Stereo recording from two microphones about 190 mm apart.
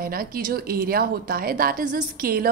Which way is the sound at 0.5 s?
50° right (ahead or behind).